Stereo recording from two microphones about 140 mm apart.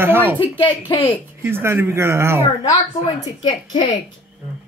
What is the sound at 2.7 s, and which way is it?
A woman's voice, 30° left (ahead or behind).